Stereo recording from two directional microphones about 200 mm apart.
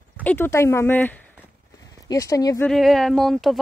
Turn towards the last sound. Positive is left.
turn(degrees=0)  # may be behind; listen again after turning